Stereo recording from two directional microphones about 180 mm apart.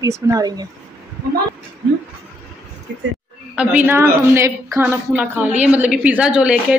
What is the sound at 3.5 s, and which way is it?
A woman's voice, 10° right (ahead or behind).